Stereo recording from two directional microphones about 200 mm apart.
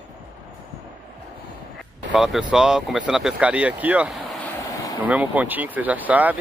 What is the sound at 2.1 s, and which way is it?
Speech, centre (ahead or behind).